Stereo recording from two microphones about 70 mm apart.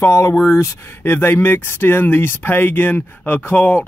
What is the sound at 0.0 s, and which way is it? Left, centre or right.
Speech, left.